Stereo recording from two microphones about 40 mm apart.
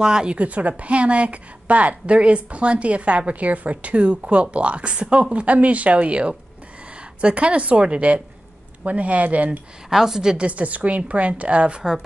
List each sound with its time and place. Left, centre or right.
0.0 s a woman's voice: right
0.4 s a woman's voice: right
9.8 s a woman's voice: centre
10.3 s a woman's voice: right